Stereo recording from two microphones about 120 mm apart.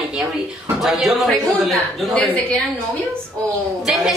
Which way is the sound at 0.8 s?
Centre (ahead or behind).